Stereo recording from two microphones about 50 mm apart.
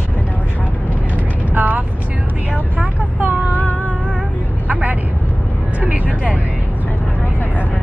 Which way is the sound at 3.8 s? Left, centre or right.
Right.